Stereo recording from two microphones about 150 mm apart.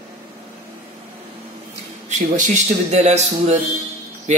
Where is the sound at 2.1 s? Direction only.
55° right (ahead or behind).